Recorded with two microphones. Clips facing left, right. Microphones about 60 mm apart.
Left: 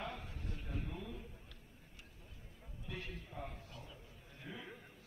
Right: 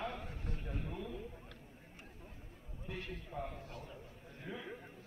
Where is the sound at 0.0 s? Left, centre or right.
Right.